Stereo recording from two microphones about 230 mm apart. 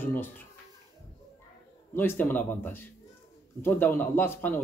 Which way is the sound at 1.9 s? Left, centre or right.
Centre.